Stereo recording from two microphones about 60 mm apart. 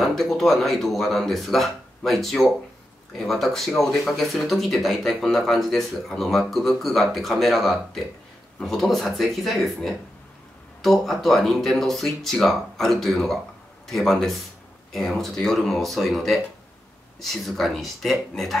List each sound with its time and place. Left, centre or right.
0.0 s speech: centre